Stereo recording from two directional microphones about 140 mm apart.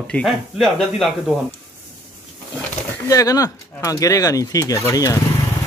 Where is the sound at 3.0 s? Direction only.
25° left (ahead or behind).